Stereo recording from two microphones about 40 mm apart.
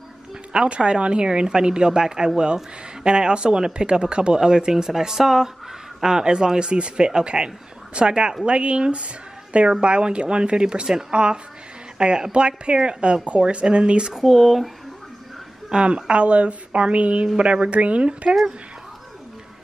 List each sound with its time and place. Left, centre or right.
0.5 s speech: right
14.1 s speech: centre
15.7 s speech: right